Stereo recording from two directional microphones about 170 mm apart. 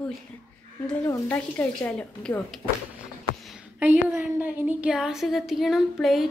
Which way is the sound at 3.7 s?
10° right (ahead or behind).